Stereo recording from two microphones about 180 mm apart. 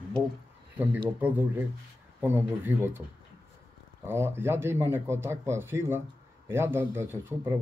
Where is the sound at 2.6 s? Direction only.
15° right (ahead or behind).